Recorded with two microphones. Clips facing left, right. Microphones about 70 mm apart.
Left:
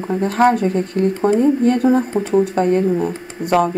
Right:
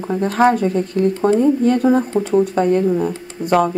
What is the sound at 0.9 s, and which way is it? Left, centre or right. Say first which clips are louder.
Speech: right 1 dB; left.